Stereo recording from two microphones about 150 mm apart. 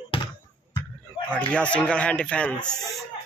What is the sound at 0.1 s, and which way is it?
Basketball bounce, 35° left (ahead or behind).